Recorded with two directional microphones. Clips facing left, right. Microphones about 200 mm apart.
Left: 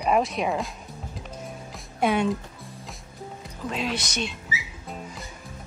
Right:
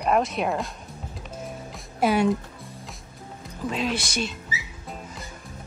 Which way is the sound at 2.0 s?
5° right (ahead or behind).